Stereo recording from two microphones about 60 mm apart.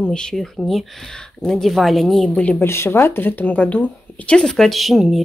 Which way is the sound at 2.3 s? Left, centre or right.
Left.